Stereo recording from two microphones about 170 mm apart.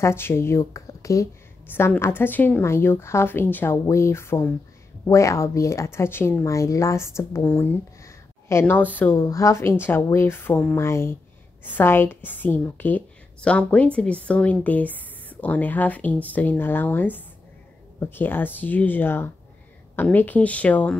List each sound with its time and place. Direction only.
0.0 s speech: 15° left (ahead or behind)